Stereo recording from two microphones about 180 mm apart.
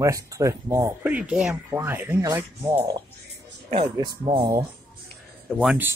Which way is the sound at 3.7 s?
30° right (ahead or behind).